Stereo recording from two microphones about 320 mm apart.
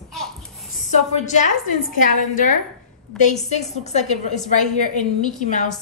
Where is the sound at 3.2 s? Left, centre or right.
Left.